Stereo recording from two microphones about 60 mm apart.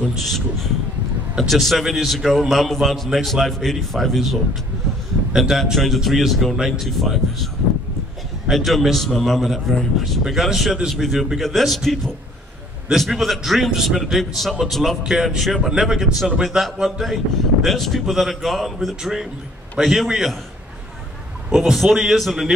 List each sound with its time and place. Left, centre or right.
1.5 s speech: centre
8.5 s speech: centre
21.5 s speech: centre